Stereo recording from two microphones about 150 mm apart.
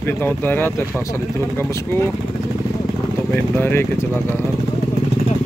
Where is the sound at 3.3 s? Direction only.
15° left (ahead or behind).